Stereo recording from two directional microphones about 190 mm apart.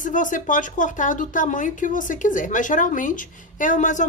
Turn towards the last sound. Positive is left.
turn(degrees=40)  # may be behind; listen again after turning